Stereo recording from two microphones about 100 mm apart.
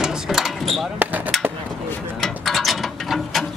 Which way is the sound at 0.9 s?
15° right (ahead or behind).